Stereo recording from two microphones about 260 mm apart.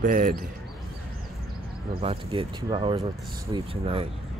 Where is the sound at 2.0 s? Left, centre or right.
Right.